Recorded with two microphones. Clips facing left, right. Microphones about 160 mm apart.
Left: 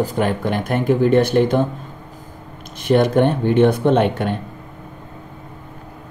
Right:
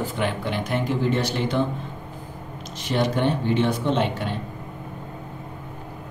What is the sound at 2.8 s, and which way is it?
Speech, 55° left (ahead or behind).